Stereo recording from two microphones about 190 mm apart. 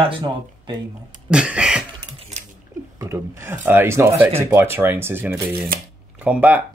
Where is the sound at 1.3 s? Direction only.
5° right (ahead or behind).